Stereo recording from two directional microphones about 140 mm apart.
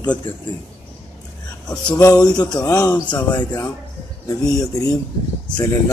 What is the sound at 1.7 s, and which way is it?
Speech, 30° left (ahead or behind).